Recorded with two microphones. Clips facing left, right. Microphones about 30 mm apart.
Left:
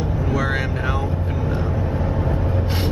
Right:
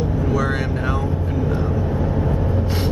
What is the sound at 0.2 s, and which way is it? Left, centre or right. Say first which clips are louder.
Vehicle: even; centre.